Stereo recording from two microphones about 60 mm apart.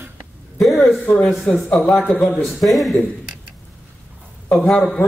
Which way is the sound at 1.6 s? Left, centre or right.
Centre.